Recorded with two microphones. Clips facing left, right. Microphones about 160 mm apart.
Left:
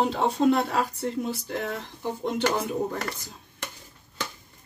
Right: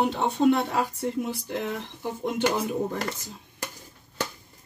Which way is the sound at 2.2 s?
10° right (ahead or behind).